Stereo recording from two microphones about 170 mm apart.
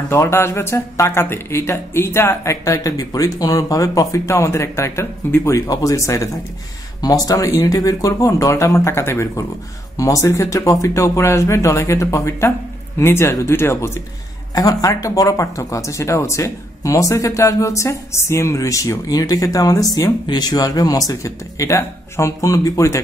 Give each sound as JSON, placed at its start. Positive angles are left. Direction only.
{"t": 0.1, "sound": "speech", "side_deg": 15}